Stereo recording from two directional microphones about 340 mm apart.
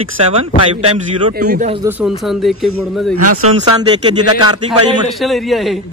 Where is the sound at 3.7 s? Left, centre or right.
Centre.